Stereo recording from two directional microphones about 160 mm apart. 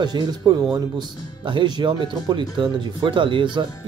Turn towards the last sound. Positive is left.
turn(degrees=-30)  # may be behind; listen again after turning